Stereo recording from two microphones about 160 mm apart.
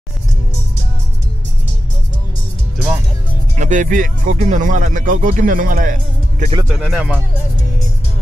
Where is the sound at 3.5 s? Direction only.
50° right (ahead or behind).